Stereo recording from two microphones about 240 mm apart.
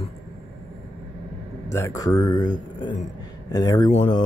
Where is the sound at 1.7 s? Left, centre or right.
Centre.